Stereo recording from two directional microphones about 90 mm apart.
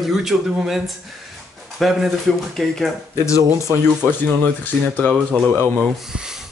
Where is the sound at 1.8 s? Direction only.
Centre (ahead or behind).